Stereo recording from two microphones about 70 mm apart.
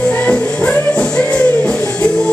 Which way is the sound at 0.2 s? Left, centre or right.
Centre.